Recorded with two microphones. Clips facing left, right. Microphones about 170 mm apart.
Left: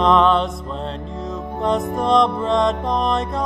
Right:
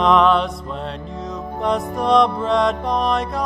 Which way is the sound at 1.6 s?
Centre (ahead or behind).